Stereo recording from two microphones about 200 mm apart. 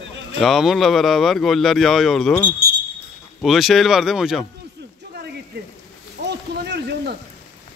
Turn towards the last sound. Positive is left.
turn(degrees=-55)  # may be behind; listen again after turning